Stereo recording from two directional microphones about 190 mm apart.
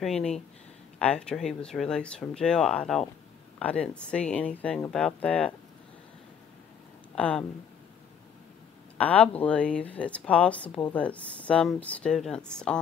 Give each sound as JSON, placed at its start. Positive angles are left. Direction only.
{"t": 0.0, "sound": "speech", "side_deg": 5}
{"t": 7.2, "sound": "speech", "side_deg": 5}
{"t": 8.9, "sound": "speech", "side_deg": 5}